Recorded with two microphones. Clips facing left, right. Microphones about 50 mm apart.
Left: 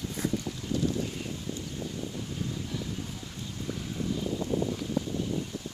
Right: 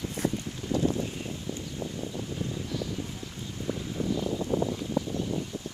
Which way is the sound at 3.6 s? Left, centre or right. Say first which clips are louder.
Right 3 dB; centre.